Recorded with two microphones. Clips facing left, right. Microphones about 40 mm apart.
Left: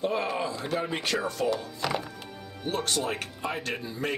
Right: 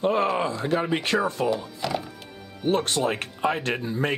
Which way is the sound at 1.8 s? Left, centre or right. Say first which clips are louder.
Right 1 dB; centre.